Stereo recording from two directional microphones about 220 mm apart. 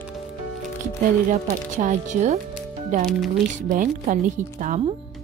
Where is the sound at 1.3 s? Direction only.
35° right (ahead or behind).